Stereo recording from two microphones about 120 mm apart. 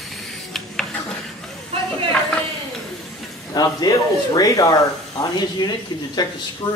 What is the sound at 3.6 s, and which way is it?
Speech, 35° left (ahead or behind).